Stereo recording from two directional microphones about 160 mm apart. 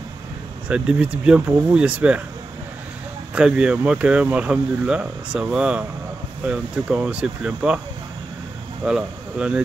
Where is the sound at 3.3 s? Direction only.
5° right (ahead or behind).